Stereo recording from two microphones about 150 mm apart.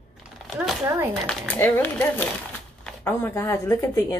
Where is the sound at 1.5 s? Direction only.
15° left (ahead or behind).